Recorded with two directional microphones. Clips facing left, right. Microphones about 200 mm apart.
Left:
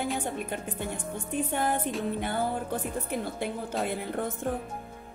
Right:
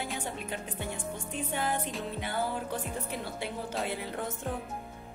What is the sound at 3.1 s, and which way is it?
Speech, 50° left (ahead or behind).